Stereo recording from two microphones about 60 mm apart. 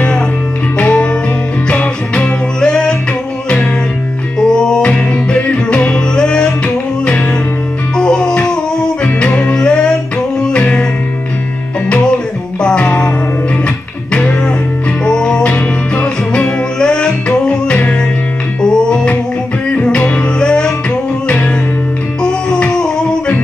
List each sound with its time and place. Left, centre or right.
0.7 s music: left
4.4 s music: centre
9.0 s music: left
12.5 s music: centre
14.1 s music: centre
22.2 s music: centre